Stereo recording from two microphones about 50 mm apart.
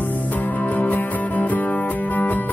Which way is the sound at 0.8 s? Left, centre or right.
Left.